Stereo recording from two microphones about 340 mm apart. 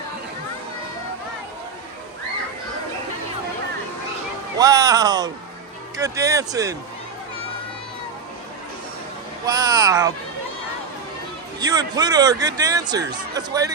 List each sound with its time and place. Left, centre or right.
4.6 s speech: centre
9.5 s speech: centre
11.6 s speech: centre